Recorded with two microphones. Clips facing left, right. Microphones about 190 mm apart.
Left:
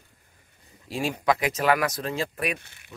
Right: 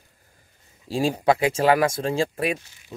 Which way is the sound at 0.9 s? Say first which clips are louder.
Right 4 dB; 30° right (ahead or behind).